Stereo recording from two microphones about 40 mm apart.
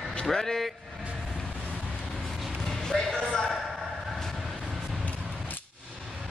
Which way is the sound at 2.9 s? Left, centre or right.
Centre.